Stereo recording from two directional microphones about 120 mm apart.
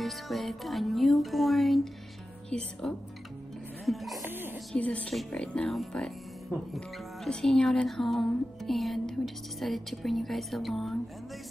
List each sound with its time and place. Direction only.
0.0 s speech: centre (ahead or behind)
4.3 s a sound: 15° right (ahead or behind)
4.7 s speech: 10° left (ahead or behind)
7.2 s speech: 5° left (ahead or behind)